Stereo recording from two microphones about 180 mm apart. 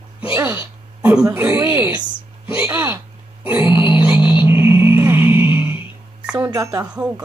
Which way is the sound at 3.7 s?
30° left (ahead or behind).